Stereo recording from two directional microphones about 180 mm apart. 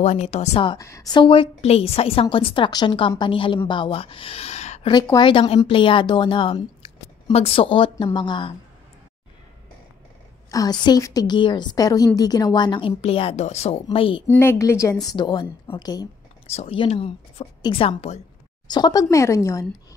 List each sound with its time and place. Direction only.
0.0 s a woman's voice: 35° left (ahead or behind)
5.1 s a woman's voice: 30° left (ahead or behind)
10.5 s a woman's voice: 20° left (ahead or behind)
14.2 s a woman's voice: 15° left (ahead or behind)
16.4 s speech: 35° left (ahead or behind)
18.7 s speech: 25° left (ahead or behind)